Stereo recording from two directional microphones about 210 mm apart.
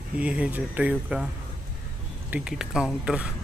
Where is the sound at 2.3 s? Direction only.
5° right (ahead or behind).